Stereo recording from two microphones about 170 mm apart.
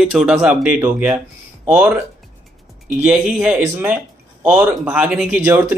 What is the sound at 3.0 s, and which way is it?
A man's voice, 5° right (ahead or behind).